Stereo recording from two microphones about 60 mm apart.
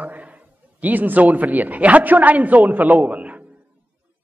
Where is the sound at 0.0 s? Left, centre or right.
Right.